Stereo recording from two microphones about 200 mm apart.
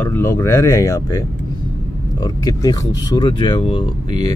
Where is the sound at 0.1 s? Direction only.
10° left (ahead or behind).